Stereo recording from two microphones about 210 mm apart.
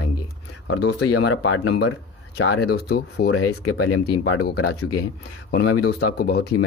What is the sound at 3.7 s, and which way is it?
Speech, 90° left.